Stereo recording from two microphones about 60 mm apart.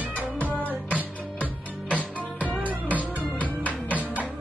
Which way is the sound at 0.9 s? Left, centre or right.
Right.